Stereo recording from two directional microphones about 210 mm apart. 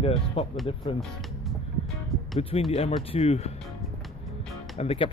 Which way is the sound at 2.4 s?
25° left (ahead or behind).